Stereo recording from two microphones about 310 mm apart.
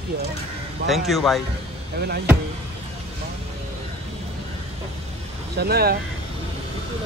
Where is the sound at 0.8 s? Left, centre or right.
Centre.